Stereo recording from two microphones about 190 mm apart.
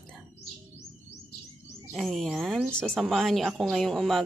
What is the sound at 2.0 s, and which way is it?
A woman's voice, centre (ahead or behind).